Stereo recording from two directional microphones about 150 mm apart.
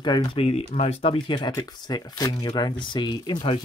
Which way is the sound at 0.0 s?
30° left (ahead or behind).